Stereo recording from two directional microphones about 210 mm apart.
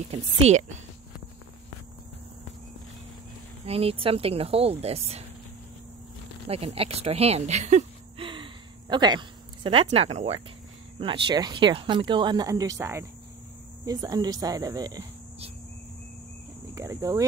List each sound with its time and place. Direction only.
0.1 s speech: 30° right (ahead or behind)
3.6 s speech: 30° right (ahead or behind)
6.5 s a woman's voice: 30° right (ahead or behind)
16.7 s speech: 15° right (ahead or behind)